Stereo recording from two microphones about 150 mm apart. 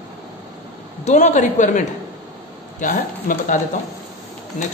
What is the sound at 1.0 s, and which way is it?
Speech, 50° left (ahead or behind).